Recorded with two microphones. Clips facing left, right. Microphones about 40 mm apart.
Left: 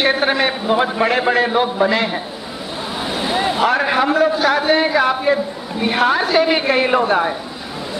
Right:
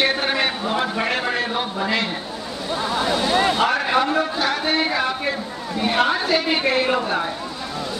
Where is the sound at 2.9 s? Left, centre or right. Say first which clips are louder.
Right 1 dB; centre.